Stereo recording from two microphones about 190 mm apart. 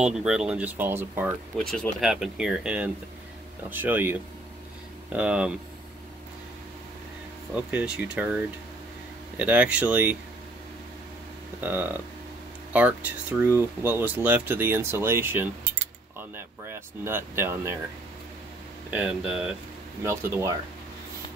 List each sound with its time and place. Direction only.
0.0 s speech: 5° right (ahead or behind)
1.7 s speech: centre (ahead or behind)
7.5 s speech: 5° right (ahead or behind)
11.6 s speech: 10° right (ahead or behind)
18.9 s speech: 5° right (ahead or behind)